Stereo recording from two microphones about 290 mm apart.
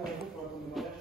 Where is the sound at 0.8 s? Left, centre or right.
Centre.